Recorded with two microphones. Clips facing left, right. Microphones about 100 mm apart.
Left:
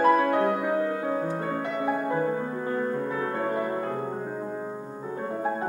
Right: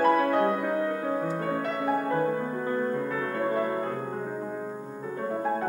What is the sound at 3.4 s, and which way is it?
Music, 20° left (ahead or behind).